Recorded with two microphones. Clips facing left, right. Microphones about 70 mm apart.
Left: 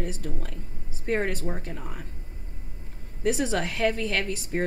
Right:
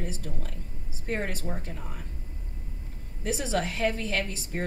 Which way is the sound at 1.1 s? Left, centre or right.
Left.